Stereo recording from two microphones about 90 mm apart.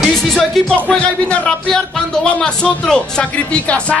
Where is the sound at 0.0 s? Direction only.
5° left (ahead or behind).